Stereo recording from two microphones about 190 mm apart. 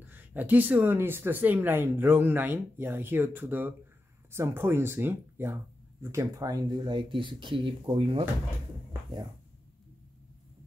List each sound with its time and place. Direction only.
0.0 s speech: 10° right (ahead or behind); by 8.3 s 30° right (ahead or behind)